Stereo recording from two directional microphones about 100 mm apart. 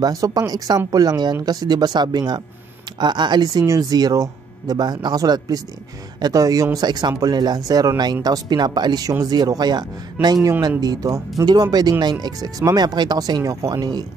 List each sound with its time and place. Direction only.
0.0 s speech: 40° right (ahead or behind)